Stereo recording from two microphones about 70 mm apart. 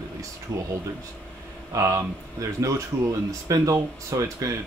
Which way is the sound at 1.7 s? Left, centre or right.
Right.